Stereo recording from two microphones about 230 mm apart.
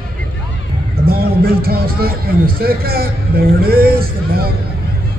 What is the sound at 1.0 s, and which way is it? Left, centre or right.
A man's voice, right.